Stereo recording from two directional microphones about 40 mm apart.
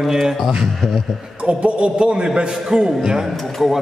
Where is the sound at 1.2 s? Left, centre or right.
Right.